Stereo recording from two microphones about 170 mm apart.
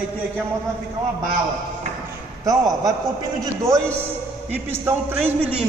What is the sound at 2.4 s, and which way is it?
A man's voice, 20° right (ahead or behind).